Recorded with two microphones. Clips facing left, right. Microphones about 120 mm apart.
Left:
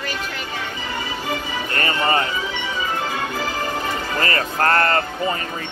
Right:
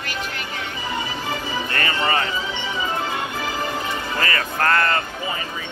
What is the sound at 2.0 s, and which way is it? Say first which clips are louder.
Music: left 2 dB; 30° left (ahead or behind).